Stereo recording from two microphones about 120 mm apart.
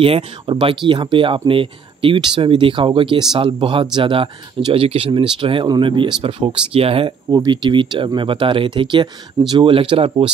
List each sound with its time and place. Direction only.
0.0 s speech: 50° right (ahead or behind)
7.2 s speech: 35° right (ahead or behind)